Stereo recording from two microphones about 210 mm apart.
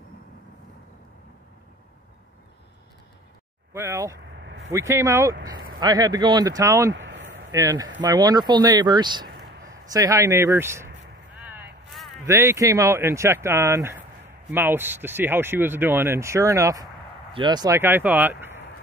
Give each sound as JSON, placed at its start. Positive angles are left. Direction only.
{"t": 3.7, "sound": "speech", "side_deg": -15}
{"t": 6.9, "sound": "a sound", "side_deg": -60}
{"t": 7.5, "sound": "speech", "side_deg": -15}
{"t": 11.4, "sound": "vehicle", "side_deg": -10}
{"t": 12.3, "sound": "speech", "side_deg": -15}